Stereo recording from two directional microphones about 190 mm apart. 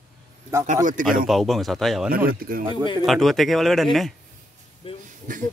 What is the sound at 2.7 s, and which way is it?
Speech, 25° left (ahead or behind).